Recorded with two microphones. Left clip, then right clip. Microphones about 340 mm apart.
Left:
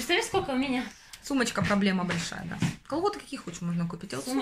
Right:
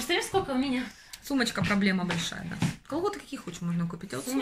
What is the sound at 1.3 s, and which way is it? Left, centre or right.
Speech, centre.